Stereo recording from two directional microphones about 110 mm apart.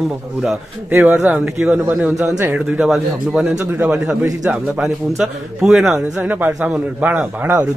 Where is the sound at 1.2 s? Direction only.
15° right (ahead or behind).